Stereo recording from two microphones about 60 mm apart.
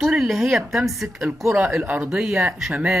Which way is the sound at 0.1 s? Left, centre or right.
Centre.